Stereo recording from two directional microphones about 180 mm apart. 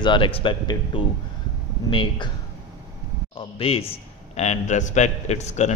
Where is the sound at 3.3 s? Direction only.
30° left (ahead or behind).